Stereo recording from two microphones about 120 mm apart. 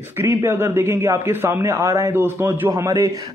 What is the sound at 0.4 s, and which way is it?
A man's voice, 20° right (ahead or behind).